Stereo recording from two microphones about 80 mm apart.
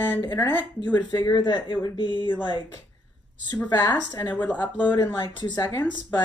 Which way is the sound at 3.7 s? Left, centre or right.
Left.